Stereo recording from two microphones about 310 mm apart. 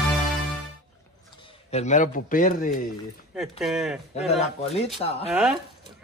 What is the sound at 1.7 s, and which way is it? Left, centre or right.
A man's voice, left.